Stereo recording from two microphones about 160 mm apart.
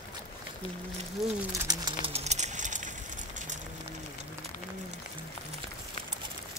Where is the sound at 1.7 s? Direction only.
30° right (ahead or behind); by 2.9 s 50° right (ahead or behind).